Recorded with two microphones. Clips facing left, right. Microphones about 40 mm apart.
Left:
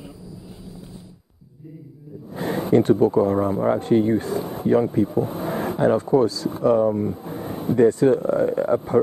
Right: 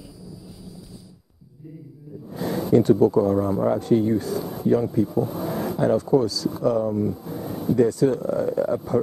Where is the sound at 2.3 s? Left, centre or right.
Left.